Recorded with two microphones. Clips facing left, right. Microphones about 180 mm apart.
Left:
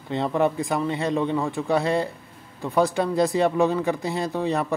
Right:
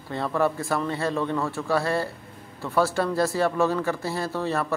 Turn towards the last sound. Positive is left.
turn(degrees=15)  # may be behind; listen again after turning